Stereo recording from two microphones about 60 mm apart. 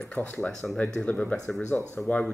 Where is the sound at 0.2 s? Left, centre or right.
Left.